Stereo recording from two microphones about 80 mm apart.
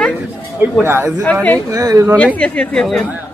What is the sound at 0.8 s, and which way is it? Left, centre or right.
Speech, right.